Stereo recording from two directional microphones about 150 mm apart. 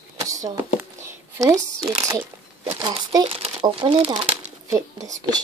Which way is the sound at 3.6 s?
30° right (ahead or behind).